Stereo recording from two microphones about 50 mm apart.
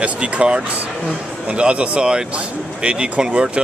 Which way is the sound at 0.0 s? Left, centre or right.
Right.